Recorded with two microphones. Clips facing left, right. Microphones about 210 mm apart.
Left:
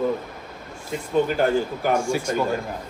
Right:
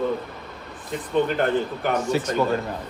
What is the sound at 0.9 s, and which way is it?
A man's voice, 5° left (ahead or behind).